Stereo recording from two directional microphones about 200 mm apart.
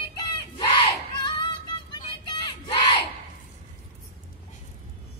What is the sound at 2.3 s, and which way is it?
Crowd, 20° left (ahead or behind).